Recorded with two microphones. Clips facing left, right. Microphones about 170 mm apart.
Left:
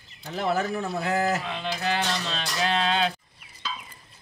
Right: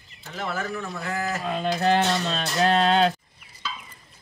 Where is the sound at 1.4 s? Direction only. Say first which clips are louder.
Right 6 dB; 45° right (ahead or behind).